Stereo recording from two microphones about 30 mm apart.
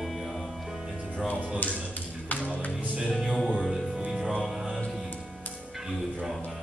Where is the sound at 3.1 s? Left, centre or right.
Centre.